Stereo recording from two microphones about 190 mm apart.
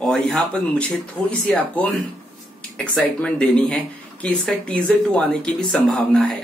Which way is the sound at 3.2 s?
5° left (ahead or behind).